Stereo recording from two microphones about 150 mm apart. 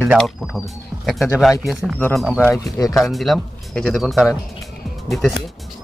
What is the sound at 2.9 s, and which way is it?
Speech, centre (ahead or behind).